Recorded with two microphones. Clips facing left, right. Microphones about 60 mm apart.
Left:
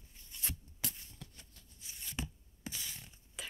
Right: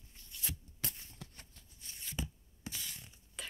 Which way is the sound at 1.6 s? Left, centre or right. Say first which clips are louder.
Even; centre.